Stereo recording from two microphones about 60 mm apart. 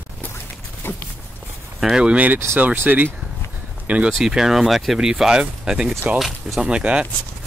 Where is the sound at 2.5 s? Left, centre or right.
Right.